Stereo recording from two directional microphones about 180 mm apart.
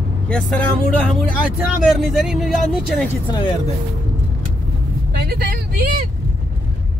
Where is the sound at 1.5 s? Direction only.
Centre (ahead or behind).